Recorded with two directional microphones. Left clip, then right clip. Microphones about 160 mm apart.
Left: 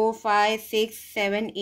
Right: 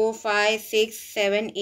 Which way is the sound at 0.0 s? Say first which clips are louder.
Left 1 dB; 40° left (ahead or behind).